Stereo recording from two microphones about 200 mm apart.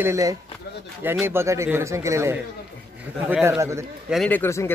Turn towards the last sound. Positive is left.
turn(degrees=10)  # may be behind; listen again after turning